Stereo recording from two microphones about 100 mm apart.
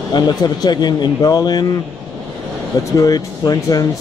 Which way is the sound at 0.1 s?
45° left (ahead or behind).